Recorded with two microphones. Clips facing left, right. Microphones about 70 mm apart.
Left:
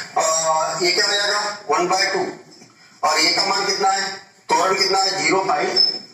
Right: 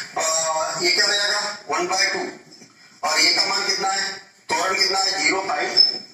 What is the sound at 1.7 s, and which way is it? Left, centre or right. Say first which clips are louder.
A man's voice: left 4 dB; left.